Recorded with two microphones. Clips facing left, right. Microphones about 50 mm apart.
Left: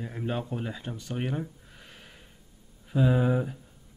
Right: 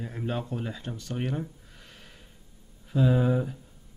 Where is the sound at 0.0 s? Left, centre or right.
Centre.